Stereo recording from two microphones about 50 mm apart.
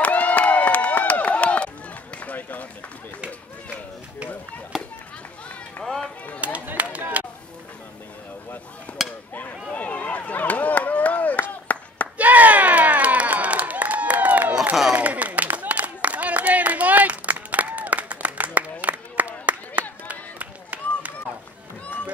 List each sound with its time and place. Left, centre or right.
0.0 s run: left
4.7 s chop: centre
5.8 s run: left
6.6 s a sound: right
8.9 s a sound: left
9.7 s run: left
11.6 s clapping: left
12.2 s crowd: right
14.9 s a sound: right
20.1 s run: right